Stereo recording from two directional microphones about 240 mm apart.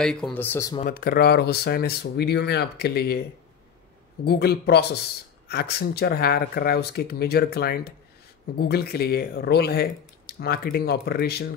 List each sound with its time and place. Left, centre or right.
0.0 s speech: centre
0.7 s speech: left